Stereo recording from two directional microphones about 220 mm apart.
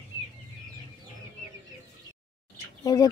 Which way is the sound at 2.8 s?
15° left (ahead or behind).